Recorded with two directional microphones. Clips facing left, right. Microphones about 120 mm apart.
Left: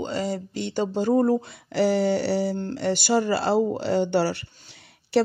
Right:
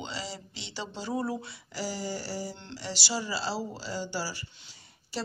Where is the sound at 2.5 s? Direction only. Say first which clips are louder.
Left 14 dB; 50° left (ahead or behind).